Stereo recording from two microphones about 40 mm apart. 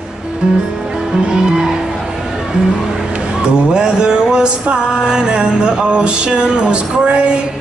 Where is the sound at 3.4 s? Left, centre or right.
Right.